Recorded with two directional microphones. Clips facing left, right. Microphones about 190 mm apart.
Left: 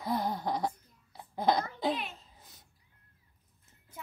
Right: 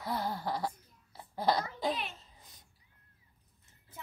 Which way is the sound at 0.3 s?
20° left (ahead or behind).